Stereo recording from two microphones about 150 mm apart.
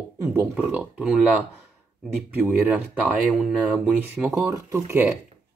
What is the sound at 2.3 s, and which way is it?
Speech, 10° right (ahead or behind).